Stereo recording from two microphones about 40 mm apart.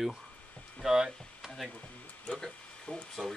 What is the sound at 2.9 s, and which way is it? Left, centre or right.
Speech, left.